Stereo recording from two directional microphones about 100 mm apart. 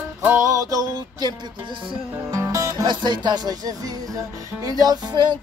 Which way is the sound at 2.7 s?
50° right (ahead or behind).